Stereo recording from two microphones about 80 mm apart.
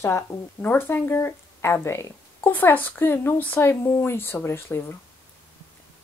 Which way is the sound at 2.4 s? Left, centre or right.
Left.